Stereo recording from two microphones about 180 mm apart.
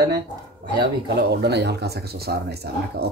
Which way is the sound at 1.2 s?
65° right (ahead or behind).